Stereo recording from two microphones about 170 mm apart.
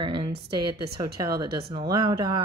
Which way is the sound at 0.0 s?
25° right (ahead or behind).